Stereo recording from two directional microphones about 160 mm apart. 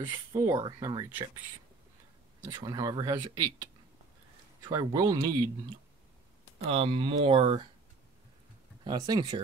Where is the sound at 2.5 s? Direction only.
25° right (ahead or behind).